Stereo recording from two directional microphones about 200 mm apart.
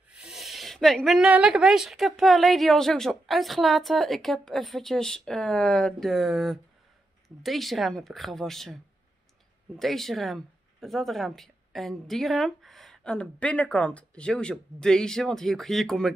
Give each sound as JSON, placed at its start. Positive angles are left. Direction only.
{"t": 0.1, "sound": "speech", "side_deg": -5}